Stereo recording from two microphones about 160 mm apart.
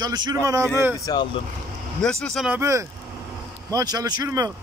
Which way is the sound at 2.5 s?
20° right (ahead or behind).